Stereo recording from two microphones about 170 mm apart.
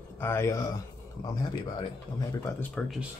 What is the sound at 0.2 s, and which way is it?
Speech, 15° left (ahead or behind).